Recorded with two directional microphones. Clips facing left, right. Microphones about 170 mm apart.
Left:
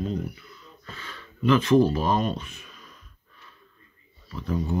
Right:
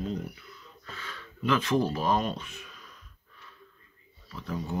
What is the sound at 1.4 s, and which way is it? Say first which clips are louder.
Speech: left 7 dB; 5° right (ahead or behind).